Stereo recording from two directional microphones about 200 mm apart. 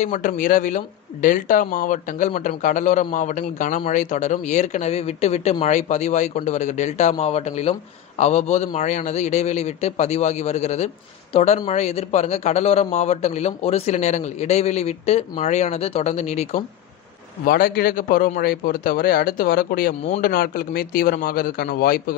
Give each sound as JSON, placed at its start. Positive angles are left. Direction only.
{"t": 0.0, "sound": "speech", "side_deg": 40}
{"t": 17.5, "sound": "a man's voice", "side_deg": 45}